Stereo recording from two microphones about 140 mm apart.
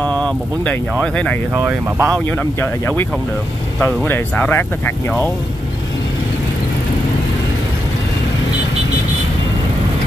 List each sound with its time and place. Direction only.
0.0 s speech: 10° left (ahead or behind)
1.5 s speech: 15° right (ahead or behind)
3.8 s speech: 15° left (ahead or behind)